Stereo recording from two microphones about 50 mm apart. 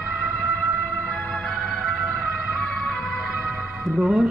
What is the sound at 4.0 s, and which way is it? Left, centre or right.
Speech, centre.